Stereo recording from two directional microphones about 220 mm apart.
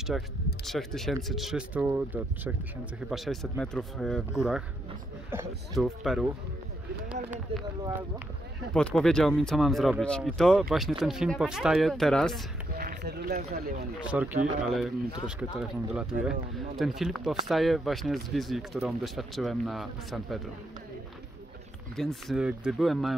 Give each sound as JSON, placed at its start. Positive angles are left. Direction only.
{"t": 0.1, "sound": "speech", "side_deg": 0}
{"t": 5.8, "sound": "speech", "side_deg": 0}
{"t": 8.7, "sound": "speech", "side_deg": 5}
{"t": 12.7, "sound": "speech", "side_deg": -45}
{"t": 14.0, "sound": "speech", "side_deg": -5}
{"t": 21.9, "sound": "speech", "side_deg": 0}